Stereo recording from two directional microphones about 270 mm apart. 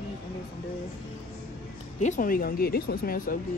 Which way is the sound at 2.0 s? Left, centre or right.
Left.